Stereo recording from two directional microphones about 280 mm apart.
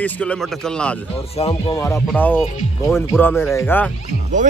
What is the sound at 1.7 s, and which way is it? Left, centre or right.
Speech, centre.